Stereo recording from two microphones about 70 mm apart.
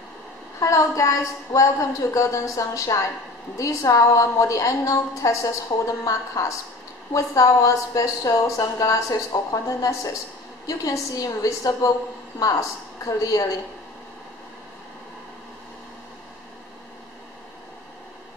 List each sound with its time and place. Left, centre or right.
0.6 s a woman's voice: left
5.7 s a woman's voice: left
6.0 s a woman's voice: left